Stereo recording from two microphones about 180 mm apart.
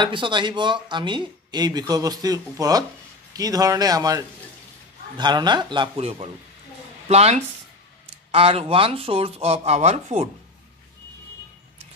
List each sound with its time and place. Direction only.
0.0 s speech: 25° right (ahead or behind)